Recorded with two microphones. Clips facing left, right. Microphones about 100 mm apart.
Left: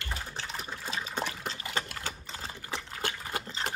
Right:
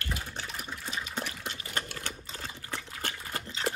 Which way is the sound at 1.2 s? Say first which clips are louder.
Left 3 dB; 35° left (ahead or behind).